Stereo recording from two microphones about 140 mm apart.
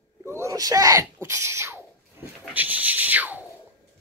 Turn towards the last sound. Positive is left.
turn(degrees=-10)  # may be behind; listen again after turning